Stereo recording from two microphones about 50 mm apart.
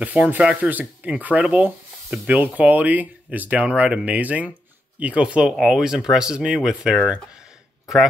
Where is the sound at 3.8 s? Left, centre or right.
Right.